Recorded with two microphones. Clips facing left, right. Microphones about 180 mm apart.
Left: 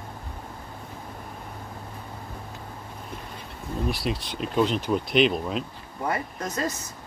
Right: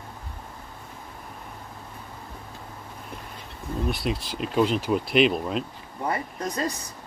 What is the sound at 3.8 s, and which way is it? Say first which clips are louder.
Speech: even; centre (ahead or behind).